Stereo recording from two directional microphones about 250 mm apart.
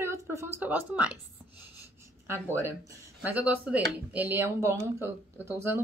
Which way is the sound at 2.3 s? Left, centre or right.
Centre.